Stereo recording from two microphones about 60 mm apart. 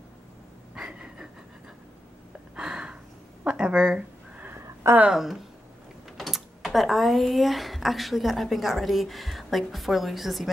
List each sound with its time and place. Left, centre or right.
0.7 s pant: centre
2.5 s a sound: centre
5.1 s speech: centre